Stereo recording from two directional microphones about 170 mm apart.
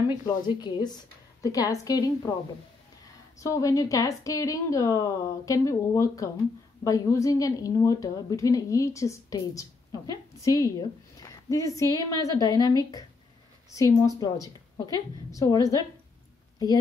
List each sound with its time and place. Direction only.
0.1 s a woman's voice: 25° left (ahead or behind)
3.3 s a woman's voice: 20° left (ahead or behind)